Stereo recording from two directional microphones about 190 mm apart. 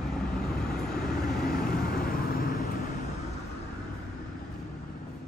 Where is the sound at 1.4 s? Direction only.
50° left (ahead or behind).